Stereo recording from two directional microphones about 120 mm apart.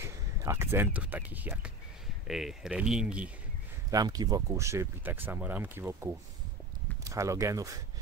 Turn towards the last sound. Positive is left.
turn(degrees=-25)  # may be behind; listen again after turning